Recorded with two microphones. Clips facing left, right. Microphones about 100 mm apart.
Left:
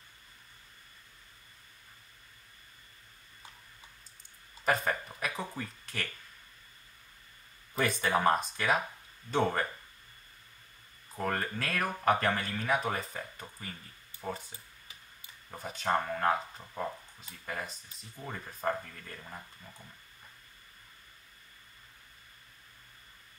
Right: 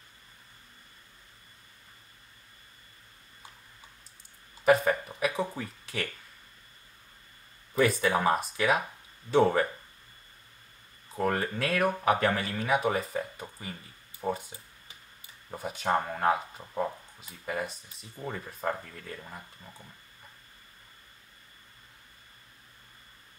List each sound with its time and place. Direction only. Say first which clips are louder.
4.6 s speech: right 7 dB; centre (ahead or behind)
7.8 s speech: right 3 dB; 5° right (ahead or behind)
11.1 s speech: right 5 dB; 5° right (ahead or behind)
15.5 s speech: right 3 dB; 5° right (ahead or behind)